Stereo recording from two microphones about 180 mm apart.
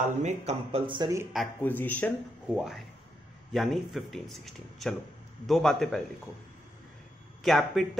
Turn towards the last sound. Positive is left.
turn(degrees=0)  # may be behind; listen again after turning